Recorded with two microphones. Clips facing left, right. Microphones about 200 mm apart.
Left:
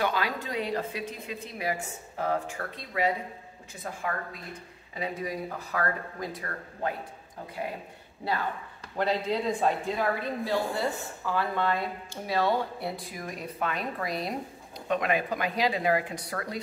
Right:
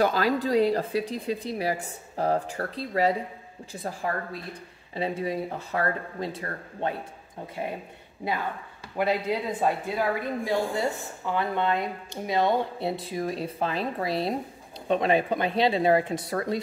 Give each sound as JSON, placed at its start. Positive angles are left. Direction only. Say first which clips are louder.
{"t": 0.0, "sound": "speech", "louder": "right 6 dB", "side_deg": -40}
{"t": 8.9, "sound": "speech", "louder": "right 2 dB", "side_deg": -10}